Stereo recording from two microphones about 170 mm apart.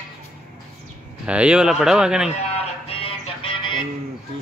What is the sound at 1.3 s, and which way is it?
Speech, 5° right (ahead or behind).